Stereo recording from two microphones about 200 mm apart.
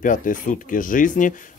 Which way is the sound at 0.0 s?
40° left (ahead or behind).